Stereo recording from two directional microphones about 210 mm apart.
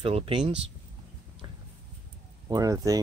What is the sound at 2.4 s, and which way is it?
Speech, 15° right (ahead or behind).